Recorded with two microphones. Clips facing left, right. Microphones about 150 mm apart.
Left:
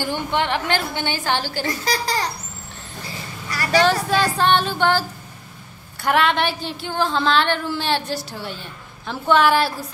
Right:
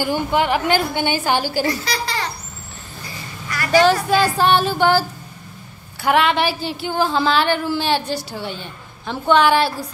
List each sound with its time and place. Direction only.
0.0 s a woman's voice: 10° right (ahead or behind)
1.9 s speech: 40° left (ahead or behind)
3.7 s a woman's voice: centre (ahead or behind)
6.0 s a woman's voice: centre (ahead or behind)